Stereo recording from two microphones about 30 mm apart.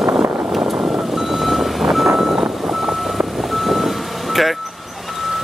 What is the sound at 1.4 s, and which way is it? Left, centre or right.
Vehicle, centre.